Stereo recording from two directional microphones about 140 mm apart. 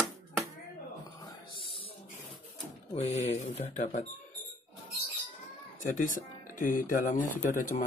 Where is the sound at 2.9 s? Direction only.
50° left (ahead or behind).